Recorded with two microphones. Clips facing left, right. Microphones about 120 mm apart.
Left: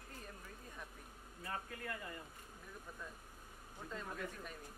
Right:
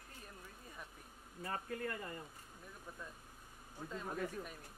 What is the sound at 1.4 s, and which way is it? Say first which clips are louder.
Speech: right 4 dB; 40° right (ahead or behind).